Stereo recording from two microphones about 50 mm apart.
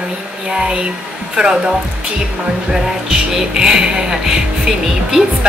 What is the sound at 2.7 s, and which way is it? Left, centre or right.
Speech, centre.